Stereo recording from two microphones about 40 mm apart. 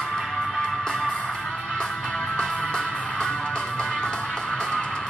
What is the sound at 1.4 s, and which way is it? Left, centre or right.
Music, centre.